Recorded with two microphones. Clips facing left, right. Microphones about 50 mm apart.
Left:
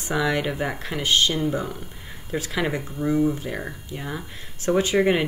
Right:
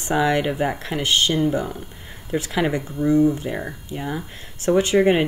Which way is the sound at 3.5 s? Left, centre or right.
Centre.